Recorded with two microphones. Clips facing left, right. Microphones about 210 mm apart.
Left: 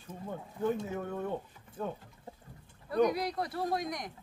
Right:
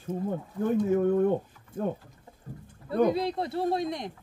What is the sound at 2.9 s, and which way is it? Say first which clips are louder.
Speech: right 4 dB; 25° right (ahead or behind).